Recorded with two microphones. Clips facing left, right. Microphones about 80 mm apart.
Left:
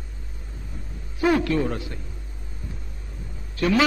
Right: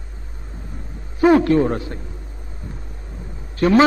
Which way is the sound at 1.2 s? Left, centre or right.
Right.